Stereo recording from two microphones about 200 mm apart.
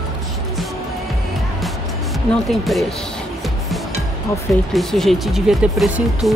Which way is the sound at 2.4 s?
Centre (ahead or behind).